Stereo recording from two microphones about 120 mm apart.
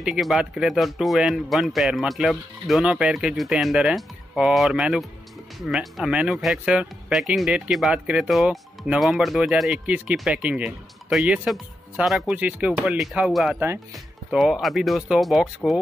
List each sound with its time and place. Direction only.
0.0 s speech: 5° right (ahead or behind)